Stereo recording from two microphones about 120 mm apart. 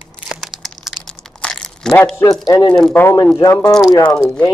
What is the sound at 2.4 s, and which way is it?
Speech, 30° left (ahead or behind).